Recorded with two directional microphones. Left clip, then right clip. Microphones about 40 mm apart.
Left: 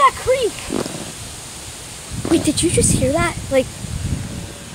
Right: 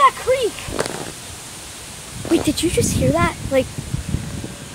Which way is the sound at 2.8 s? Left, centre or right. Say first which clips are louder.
Right 1 dB; centre.